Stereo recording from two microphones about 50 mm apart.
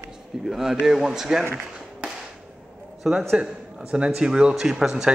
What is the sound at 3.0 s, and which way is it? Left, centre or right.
Speech, centre.